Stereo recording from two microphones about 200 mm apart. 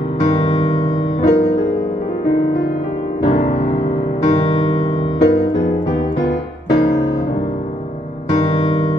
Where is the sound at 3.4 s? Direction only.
35° left (ahead or behind).